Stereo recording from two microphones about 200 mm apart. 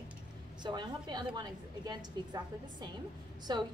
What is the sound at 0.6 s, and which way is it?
A woman's voice, 20° right (ahead or behind).